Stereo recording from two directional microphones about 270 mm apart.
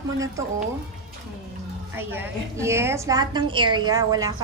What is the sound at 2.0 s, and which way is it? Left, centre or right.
A woman's voice, centre.